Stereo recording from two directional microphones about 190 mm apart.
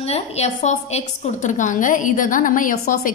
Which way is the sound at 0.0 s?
35° left (ahead or behind).